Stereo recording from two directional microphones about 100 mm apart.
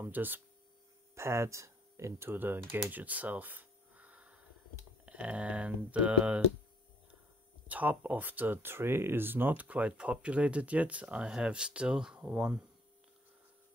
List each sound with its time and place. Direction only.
0.0 s speech: 20° right (ahead or behind)
2.8 s a sound: 15° right (ahead or behind)
5.0 s speech: 10° right (ahead or behind)
7.6 s speech: 15° right (ahead or behind)